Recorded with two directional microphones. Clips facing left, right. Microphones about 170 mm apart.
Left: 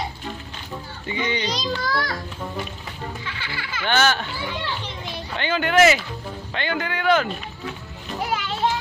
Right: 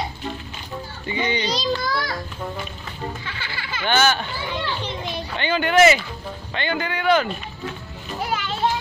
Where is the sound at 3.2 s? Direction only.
30° right (ahead or behind).